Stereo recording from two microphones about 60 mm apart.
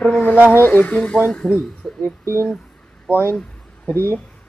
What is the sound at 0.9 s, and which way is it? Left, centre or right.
Speech, centre.